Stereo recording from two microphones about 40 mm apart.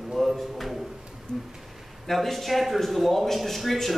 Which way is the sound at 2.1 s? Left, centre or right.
Centre.